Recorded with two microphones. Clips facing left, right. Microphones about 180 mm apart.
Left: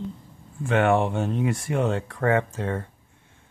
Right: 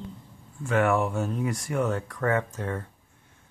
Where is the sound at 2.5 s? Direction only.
25° left (ahead or behind).